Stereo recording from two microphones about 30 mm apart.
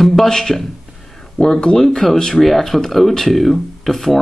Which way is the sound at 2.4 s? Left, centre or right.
Centre.